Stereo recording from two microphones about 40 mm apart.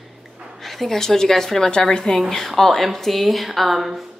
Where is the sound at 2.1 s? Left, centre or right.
Centre.